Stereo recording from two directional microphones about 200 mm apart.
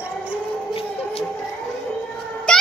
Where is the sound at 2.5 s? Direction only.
5° left (ahead or behind).